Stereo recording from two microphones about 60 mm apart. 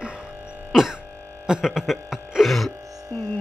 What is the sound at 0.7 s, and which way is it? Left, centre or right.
Throat clearing, centre.